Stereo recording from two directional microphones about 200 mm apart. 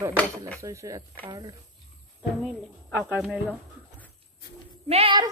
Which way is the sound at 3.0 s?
5° right (ahead or behind).